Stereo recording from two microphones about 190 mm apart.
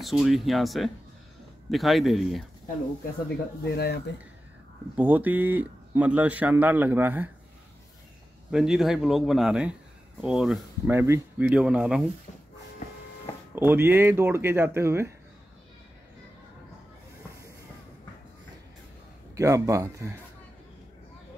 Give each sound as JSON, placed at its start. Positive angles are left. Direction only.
{"t": 0.0, "sound": "speech", "side_deg": 0}
{"t": 3.7, "sound": "speech", "side_deg": 60}
{"t": 4.9, "sound": "speech", "side_deg": -10}
{"t": 8.5, "sound": "speech", "side_deg": -5}
{"t": 13.6, "sound": "speech", "side_deg": -10}
{"t": 19.3, "sound": "speech", "side_deg": -15}